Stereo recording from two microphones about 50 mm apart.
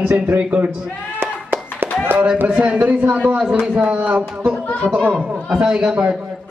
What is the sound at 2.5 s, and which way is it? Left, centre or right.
Speech, right.